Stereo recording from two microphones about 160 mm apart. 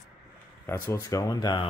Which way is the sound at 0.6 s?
15° left (ahead or behind).